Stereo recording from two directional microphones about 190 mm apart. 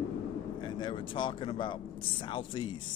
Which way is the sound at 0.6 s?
25° left (ahead or behind).